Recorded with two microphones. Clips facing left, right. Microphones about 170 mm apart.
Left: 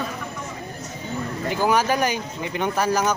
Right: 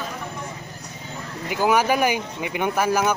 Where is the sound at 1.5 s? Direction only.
10° right (ahead or behind).